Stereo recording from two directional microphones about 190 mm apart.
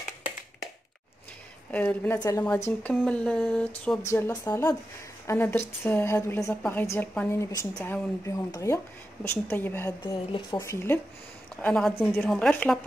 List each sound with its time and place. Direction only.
1.7 s a woman's voice: 5° left (ahead or behind)
4.1 s a woman's voice: 15° left (ahead or behind)